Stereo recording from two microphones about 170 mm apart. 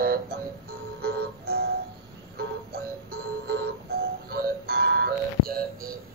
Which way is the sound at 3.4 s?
75° right (ahead or behind).